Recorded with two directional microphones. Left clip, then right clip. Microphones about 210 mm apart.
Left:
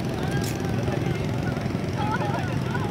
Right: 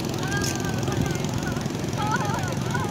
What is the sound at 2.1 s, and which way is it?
Vehicle, 55° right (ahead or behind).